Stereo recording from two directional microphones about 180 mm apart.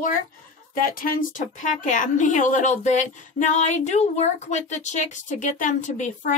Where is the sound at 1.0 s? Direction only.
50° left (ahead or behind).